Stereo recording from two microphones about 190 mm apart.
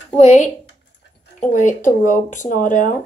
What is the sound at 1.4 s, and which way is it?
Speech, 40° left (ahead or behind).